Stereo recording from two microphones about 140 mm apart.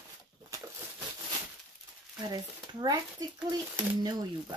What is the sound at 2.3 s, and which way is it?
Speech, 30° right (ahead or behind).